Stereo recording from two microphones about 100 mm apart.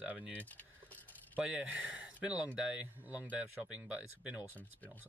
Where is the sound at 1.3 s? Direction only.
15° right (ahead or behind).